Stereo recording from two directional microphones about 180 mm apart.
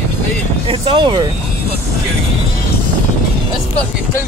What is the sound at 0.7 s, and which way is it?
Speech, 25° right (ahead or behind).